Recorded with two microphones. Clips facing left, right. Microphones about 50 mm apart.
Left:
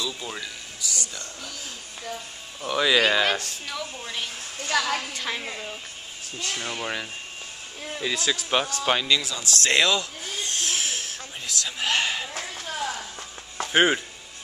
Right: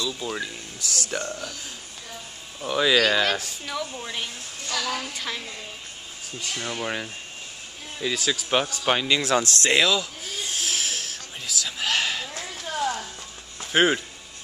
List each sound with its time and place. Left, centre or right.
0.0 s a sound: centre
0.7 s speech: right
2.6 s speech: centre
3.3 s speech: centre
4.6 s a woman's voice: left
6.4 s speech: centre
9.2 s speech: right
9.7 s a sound: centre
13.7 s speech: centre